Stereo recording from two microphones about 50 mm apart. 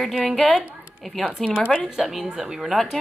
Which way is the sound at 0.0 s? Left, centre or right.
Centre.